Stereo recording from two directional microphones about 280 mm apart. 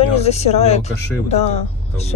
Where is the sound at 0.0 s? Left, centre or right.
Left.